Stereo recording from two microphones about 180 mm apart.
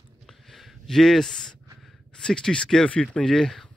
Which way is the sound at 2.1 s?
5° left (ahead or behind).